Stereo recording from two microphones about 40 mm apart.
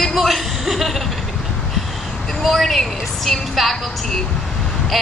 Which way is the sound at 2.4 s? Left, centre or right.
Centre.